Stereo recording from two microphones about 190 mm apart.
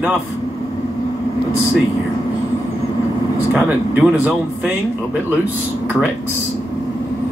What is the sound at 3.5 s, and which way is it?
Speech, 10° right (ahead or behind).